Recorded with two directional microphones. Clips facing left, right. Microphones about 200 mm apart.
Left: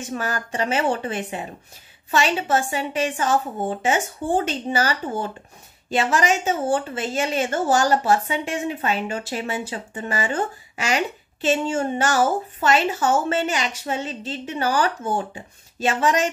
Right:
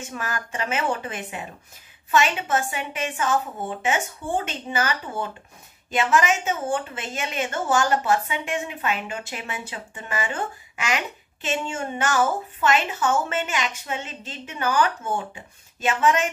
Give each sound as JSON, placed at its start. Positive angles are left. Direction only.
{"t": 0.0, "sound": "a woman's voice", "side_deg": 35}